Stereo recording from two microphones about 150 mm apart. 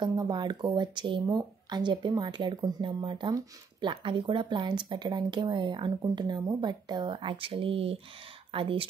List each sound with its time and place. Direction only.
0.0 s speech: 30° right (ahead or behind)